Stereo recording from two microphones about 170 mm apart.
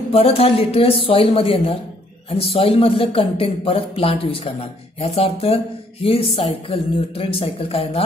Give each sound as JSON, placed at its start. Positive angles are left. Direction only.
{"t": 0.1, "sound": "speech", "side_deg": 35}